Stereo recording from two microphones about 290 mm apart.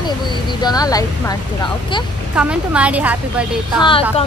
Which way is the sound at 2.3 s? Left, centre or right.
Centre.